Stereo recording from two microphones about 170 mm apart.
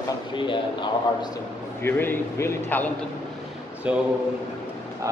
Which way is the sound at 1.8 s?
15° left (ahead or behind).